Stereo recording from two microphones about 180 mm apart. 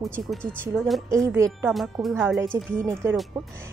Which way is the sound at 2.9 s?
15° right (ahead or behind).